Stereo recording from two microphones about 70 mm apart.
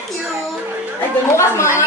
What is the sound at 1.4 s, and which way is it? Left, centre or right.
Speech, left.